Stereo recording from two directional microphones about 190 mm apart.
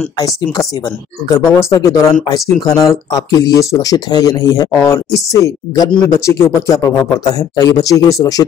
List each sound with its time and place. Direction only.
1.3 s speech: 15° left (ahead or behind)